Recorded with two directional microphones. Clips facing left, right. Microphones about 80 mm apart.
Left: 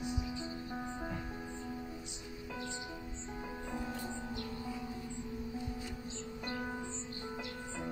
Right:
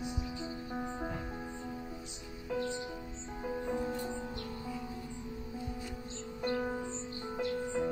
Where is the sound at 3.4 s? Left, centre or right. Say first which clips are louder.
Right 7 dB; centre.